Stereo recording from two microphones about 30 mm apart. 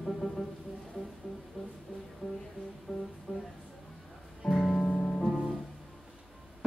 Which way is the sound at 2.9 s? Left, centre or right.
Left.